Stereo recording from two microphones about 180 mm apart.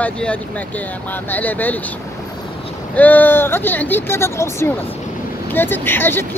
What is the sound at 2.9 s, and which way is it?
Speech, 10° left (ahead or behind).